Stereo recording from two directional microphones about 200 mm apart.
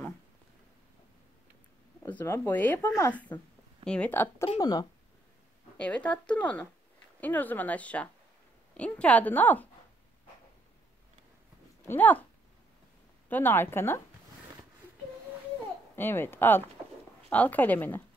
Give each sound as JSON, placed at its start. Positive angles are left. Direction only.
{"t": 2.0, "sound": "speech", "side_deg": 10}
{"t": 4.6, "sound": "speech", "side_deg": 20}
{"t": 5.8, "sound": "speech", "side_deg": 5}
{"t": 11.8, "sound": "speech", "side_deg": 10}
{"t": 13.3, "sound": "speech", "side_deg": 10}
{"t": 16.0, "sound": "speech", "side_deg": 10}